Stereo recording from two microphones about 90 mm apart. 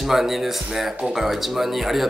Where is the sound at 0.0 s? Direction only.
Centre (ahead or behind).